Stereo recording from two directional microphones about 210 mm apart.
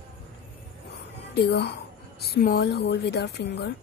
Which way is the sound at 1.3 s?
50° left (ahead or behind).